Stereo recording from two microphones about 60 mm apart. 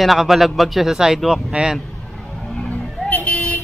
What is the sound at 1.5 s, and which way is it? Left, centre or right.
Speech, centre.